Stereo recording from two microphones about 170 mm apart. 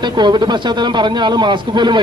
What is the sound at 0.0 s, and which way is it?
A man's voice, 25° right (ahead or behind).